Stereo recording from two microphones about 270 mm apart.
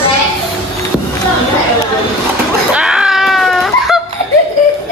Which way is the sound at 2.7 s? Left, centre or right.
Centre.